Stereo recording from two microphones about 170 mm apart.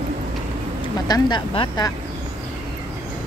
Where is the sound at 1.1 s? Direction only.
25° left (ahead or behind).